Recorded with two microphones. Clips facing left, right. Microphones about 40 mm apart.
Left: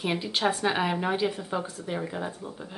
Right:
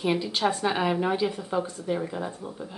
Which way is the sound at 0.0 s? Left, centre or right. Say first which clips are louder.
Right 2 dB; centre.